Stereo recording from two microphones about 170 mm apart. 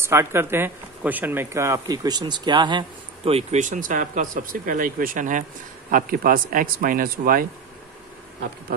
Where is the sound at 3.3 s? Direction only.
40° right (ahead or behind); by 7.4 s 55° right (ahead or behind).